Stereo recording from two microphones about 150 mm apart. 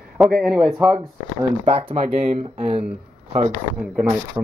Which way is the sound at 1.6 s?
40° right (ahead or behind).